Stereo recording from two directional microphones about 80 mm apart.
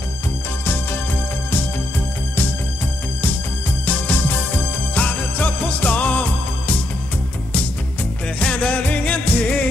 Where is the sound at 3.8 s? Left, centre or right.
Centre.